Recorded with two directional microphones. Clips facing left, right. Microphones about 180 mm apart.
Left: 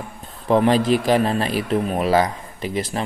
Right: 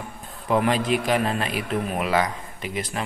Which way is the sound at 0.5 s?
30° left (ahead or behind).